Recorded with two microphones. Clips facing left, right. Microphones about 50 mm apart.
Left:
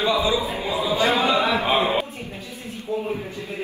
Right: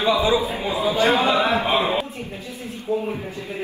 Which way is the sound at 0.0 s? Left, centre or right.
Right.